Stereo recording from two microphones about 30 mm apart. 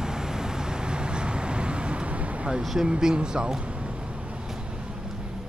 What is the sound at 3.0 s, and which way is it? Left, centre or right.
Speech, right.